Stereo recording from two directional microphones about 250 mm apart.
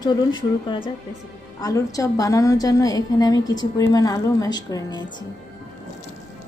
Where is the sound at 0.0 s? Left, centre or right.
Centre.